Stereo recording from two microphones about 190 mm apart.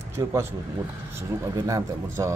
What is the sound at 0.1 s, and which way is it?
Speech, 15° right (ahead or behind).